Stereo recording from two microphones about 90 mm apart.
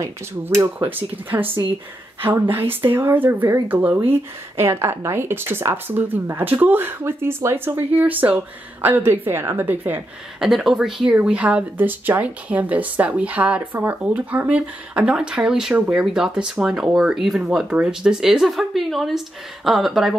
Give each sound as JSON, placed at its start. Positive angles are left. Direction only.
{"t": 0.0, "sound": "speech", "side_deg": -30}
{"t": 10.4, "sound": "speech", "side_deg": -5}